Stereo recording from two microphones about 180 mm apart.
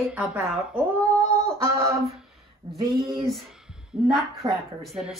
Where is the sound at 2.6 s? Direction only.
20° right (ahead or behind).